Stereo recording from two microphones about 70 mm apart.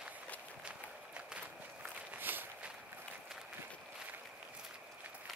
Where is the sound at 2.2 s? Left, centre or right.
Right.